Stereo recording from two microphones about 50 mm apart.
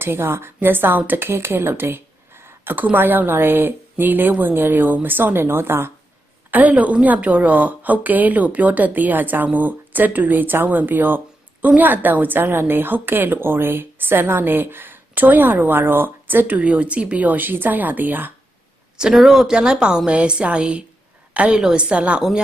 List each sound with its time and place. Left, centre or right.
0.0 s a woman's voice: right
2.7 s a woman's voice: right
6.5 s a woman's voice: right
19.1 s speech: centre
19.5 s a woman's voice: centre